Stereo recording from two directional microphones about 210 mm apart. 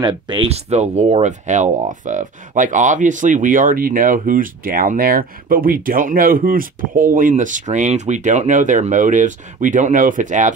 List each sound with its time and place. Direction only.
0.0 s speech: 25° right (ahead or behind)